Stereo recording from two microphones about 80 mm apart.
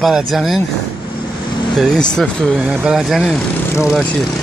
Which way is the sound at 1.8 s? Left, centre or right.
Centre.